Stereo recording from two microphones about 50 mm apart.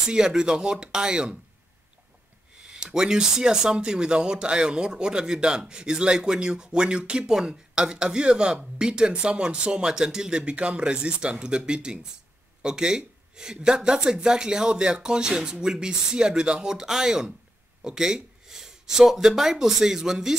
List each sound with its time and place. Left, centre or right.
0.0 s speech: centre
2.6 s speech: centre
10.4 s speech: right